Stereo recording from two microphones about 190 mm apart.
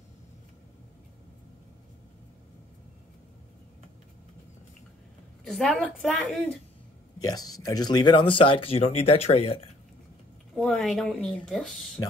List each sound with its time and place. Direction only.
5.4 s a woman's voice: centre (ahead or behind)
7.2 s speech: 20° left (ahead or behind)
10.5 s a woman's voice: centre (ahead or behind)